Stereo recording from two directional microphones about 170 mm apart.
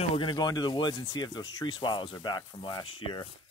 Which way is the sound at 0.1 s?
25° left (ahead or behind).